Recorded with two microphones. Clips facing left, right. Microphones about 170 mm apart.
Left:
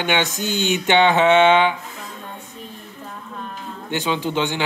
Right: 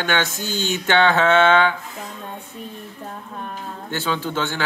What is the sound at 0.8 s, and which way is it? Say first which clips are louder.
Speech: left 1 dB; 15° left (ahead or behind).